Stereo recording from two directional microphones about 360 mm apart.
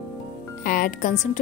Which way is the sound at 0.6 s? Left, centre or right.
Left.